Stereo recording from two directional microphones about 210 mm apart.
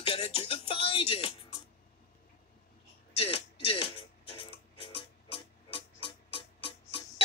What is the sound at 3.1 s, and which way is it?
Music, 30° left (ahead or behind).